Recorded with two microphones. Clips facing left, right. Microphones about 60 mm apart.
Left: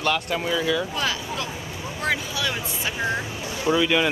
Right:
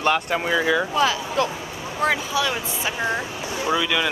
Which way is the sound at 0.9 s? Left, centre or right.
Centre.